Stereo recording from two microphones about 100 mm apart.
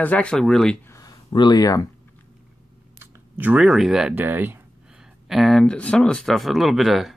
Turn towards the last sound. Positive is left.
turn(degrees=0)  # may be behind; listen again after turning